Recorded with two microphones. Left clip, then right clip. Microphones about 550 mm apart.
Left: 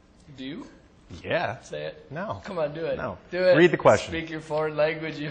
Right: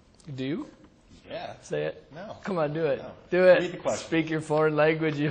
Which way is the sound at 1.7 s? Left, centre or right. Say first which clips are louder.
Right 3 dB; right.